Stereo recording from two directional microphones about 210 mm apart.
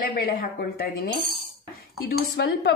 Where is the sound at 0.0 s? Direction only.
45° left (ahead or behind).